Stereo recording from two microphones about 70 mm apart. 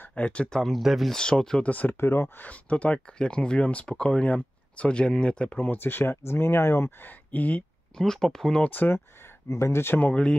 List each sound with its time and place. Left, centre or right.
0.1 s speech: centre
1.1 s speech: centre
1.7 s speech: left
5.6 s speech: left
7.1 s speech: left
8.0 s speech: centre
8.6 s speech: left
9.9 s speech: left